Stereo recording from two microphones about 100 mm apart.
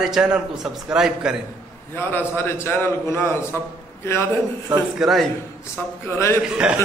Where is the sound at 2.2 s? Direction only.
20° left (ahead or behind).